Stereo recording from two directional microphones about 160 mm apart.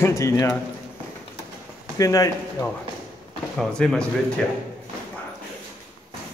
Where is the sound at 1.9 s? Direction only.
20° left (ahead or behind).